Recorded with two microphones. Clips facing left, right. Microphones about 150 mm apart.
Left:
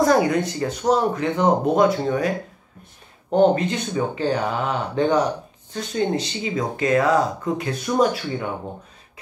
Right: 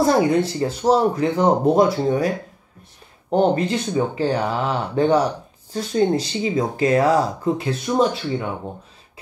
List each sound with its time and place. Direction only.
0.0 s speech: 30° right (ahead or behind)
3.3 s speech: 35° right (ahead or behind)